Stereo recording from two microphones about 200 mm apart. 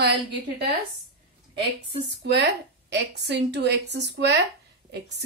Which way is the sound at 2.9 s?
60° right (ahead or behind).